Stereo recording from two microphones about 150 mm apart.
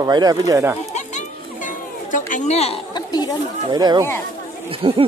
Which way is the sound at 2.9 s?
25° left (ahead or behind).